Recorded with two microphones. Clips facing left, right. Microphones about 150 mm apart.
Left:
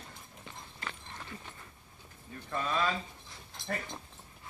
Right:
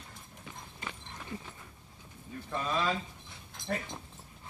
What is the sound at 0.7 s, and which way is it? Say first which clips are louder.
Horse: left 1 dB; 15° right (ahead or behind).